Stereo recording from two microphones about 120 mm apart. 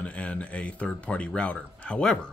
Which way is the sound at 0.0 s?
10° left (ahead or behind).